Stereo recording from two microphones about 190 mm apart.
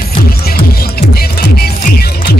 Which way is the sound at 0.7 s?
55° left (ahead or behind).